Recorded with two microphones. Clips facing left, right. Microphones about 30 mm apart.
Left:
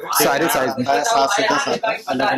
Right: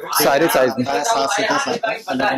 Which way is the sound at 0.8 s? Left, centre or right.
Centre.